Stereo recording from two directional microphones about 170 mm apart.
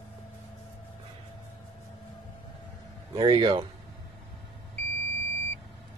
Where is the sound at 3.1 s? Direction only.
25° right (ahead or behind).